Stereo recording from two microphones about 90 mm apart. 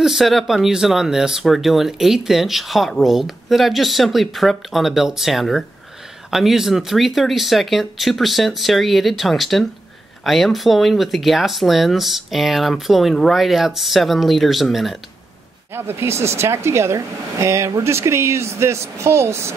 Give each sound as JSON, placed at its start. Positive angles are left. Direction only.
{"t": 0.0, "sound": "speech", "side_deg": 0}
{"t": 15.7, "sound": "speech", "side_deg": -25}